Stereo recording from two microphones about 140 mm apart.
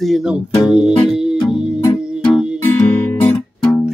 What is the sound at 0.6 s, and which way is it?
Music, centre (ahead or behind).